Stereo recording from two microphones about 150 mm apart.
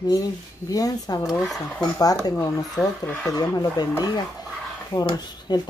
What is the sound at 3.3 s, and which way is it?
Speech, 25° left (ahead or behind).